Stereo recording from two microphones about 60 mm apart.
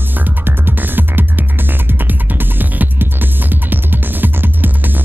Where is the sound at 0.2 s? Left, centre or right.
Right.